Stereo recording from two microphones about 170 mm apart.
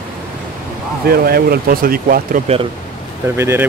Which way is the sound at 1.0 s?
65° right (ahead or behind).